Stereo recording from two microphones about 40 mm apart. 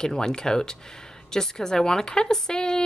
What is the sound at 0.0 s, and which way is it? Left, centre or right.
A woman's voice, centre.